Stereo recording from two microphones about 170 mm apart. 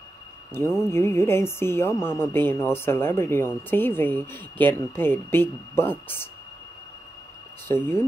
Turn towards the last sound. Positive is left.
turn(degrees=15)  # may be behind; listen again after turning